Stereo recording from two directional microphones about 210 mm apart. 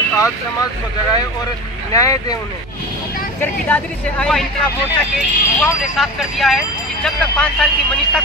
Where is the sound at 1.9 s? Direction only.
15° left (ahead or behind).